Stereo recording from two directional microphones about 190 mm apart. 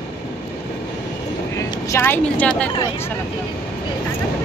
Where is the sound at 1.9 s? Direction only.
10° left (ahead or behind).